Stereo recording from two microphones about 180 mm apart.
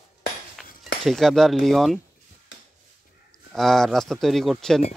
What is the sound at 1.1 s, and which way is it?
Speech, centre (ahead or behind).